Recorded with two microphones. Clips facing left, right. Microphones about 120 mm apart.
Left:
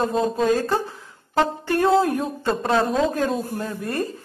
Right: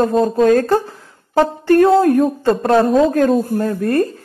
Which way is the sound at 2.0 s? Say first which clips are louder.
Right 8 dB; 50° right (ahead or behind).